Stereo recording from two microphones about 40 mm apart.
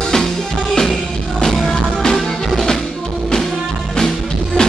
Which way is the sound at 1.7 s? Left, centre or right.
Centre.